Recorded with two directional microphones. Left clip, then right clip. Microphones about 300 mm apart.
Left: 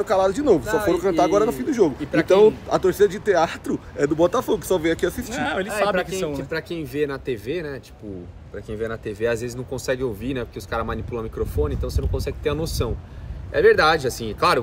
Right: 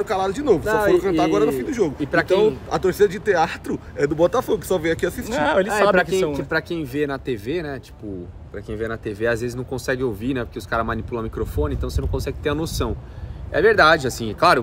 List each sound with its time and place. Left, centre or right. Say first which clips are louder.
0.0 s speech: left 3 dB; centre
2.0 s speech: right 2 dB; centre
2.7 s speech: even; centre
5.3 s speech: right 6 dB; centre
8.7 s speech: right 1 dB; centre